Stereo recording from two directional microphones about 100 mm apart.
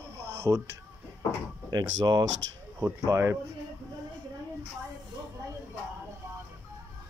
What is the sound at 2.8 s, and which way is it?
Speech, 30° right (ahead or behind).